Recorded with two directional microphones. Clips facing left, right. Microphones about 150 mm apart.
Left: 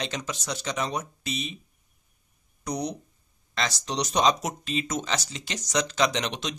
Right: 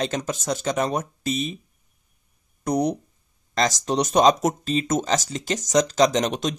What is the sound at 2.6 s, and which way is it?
Speech, 50° right (ahead or behind).